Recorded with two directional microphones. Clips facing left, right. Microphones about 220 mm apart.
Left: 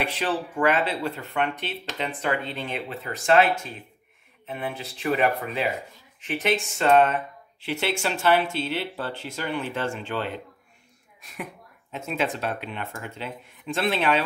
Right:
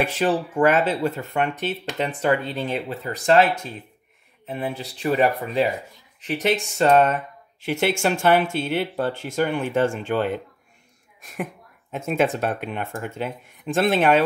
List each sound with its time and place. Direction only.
0.0 s speech: 45° right (ahead or behind)